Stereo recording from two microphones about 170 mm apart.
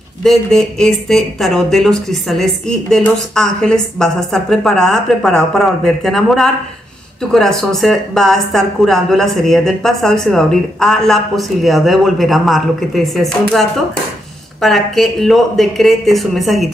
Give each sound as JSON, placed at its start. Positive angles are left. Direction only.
{"t": 0.2, "sound": "speech", "side_deg": 0}
{"t": 14.6, "sound": "speech", "side_deg": 0}